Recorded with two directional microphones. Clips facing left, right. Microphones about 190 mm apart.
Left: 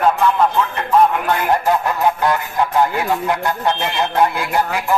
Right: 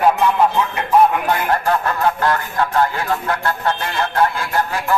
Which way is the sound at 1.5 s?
15° left (ahead or behind).